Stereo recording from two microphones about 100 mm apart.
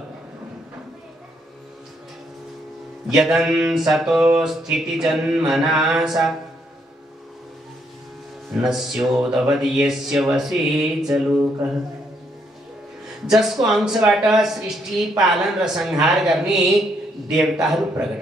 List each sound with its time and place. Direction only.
3.2 s speech: 5° right (ahead or behind)
8.5 s speech: 5° right (ahead or behind)
13.3 s speech: 5° right (ahead or behind)